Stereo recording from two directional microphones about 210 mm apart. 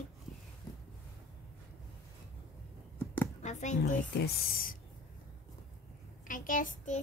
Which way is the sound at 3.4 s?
35° left (ahead or behind).